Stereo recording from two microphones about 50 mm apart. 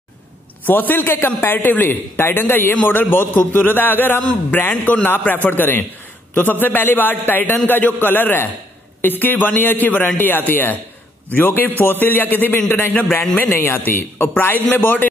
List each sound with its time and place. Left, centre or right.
0.7 s a man's voice: left